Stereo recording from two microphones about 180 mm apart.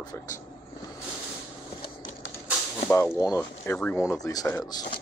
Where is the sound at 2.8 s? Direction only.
15° left (ahead or behind).